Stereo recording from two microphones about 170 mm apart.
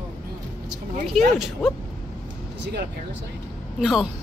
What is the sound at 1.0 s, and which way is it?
Speech, centre (ahead or behind).